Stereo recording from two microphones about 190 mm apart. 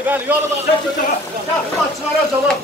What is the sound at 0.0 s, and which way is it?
Speech, 10° right (ahead or behind).